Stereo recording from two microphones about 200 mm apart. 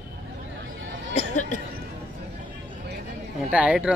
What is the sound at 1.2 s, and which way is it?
Speech, 40° left (ahead or behind).